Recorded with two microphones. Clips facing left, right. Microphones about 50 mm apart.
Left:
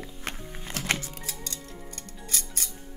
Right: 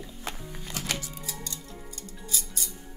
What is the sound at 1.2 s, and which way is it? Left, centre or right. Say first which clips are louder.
Scissors: even; left.